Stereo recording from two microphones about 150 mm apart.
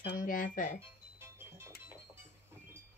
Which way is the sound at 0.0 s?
65° left (ahead or behind).